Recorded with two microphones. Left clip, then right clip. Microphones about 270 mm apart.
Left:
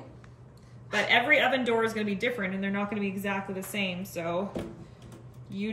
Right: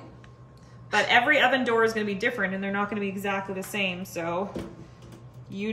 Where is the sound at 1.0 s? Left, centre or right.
Centre.